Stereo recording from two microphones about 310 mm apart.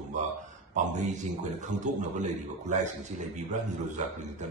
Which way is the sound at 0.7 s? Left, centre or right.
Right.